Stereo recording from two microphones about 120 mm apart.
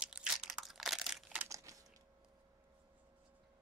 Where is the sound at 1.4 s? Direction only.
25° right (ahead or behind).